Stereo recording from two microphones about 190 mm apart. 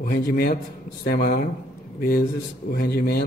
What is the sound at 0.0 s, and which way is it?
A man's voice, 50° left (ahead or behind).